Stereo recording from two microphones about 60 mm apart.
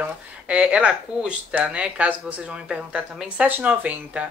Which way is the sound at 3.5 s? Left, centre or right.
Right.